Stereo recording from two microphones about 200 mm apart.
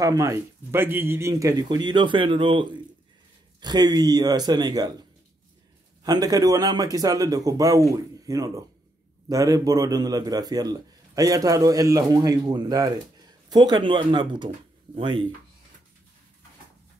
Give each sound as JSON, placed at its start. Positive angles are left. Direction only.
{"t": 0.0, "sound": "speech", "side_deg": -15}
{"t": 6.0, "sound": "a man's voice", "side_deg": -20}